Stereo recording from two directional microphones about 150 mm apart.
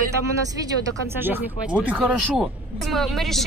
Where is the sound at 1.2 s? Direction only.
10° right (ahead or behind).